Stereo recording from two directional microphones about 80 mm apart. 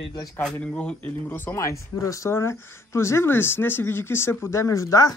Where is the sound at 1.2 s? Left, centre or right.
Left.